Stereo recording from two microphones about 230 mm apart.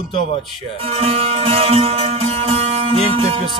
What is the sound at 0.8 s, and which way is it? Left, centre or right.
Music, right.